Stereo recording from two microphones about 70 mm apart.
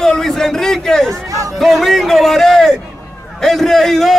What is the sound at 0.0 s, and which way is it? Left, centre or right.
A man's voice, centre.